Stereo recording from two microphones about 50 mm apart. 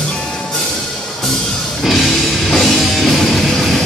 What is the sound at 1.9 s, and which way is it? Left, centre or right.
Music, centre.